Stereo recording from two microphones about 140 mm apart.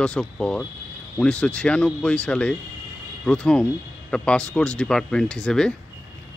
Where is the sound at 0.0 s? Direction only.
5° left (ahead or behind).